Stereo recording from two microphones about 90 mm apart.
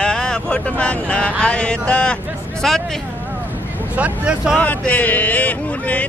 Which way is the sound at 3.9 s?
15° right (ahead or behind).